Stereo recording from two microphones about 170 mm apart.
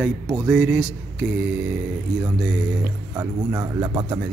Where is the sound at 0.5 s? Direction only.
5° right (ahead or behind).